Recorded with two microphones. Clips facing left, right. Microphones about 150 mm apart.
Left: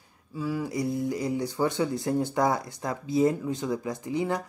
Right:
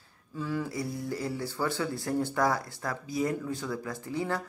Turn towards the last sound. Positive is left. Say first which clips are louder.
# left 4 dB
turn(degrees=15)  # may be behind; listen again after turning